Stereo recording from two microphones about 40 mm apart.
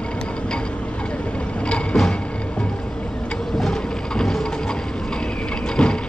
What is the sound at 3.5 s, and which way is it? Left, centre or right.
Bird, centre.